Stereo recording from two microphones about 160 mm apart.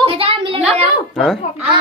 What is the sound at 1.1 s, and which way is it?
Speech, centre (ahead or behind).